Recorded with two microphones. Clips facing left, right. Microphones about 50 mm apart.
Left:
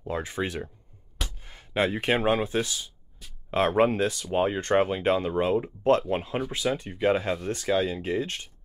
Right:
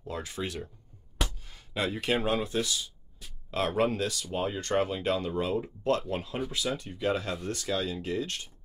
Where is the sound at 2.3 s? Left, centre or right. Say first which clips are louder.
Left 4 dB; left.